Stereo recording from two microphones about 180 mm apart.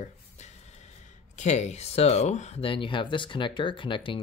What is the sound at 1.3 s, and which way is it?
Speech, 40° left (ahead or behind).